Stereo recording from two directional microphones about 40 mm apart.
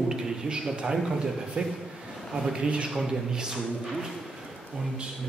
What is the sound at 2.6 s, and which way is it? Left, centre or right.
Speech, right.